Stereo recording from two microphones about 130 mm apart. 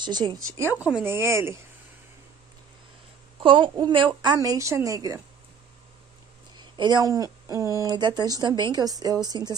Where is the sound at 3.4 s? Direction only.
40° right (ahead or behind).